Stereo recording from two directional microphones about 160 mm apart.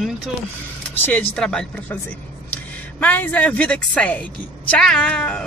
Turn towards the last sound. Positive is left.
turn(degrees=5)  # may be behind; listen again after turning